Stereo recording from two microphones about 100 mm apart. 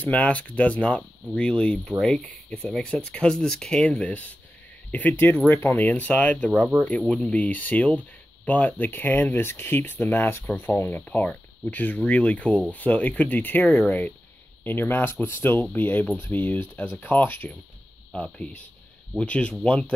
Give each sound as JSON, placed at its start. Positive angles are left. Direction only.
{"t": 0.0, "sound": "speech", "side_deg": 15}